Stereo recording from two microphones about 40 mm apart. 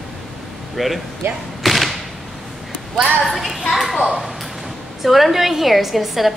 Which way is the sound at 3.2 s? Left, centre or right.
Centre.